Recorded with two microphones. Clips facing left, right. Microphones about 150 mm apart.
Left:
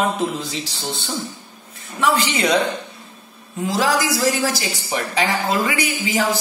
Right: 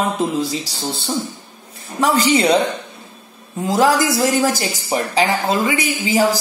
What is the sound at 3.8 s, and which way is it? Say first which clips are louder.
Speech: right 5 dB; 50° right (ahead or behind).